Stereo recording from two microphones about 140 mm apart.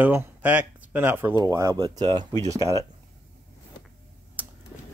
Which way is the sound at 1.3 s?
25° right (ahead or behind).